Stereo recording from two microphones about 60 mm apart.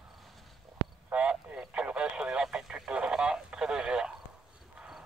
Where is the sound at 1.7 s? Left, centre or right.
Right.